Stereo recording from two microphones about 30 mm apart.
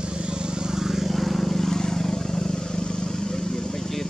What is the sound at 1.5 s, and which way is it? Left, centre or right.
Vehicle, centre.